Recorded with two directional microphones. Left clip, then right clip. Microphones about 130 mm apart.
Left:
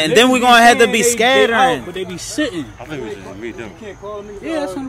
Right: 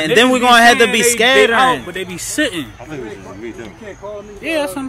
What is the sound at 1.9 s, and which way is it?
Speech, 30° right (ahead or behind).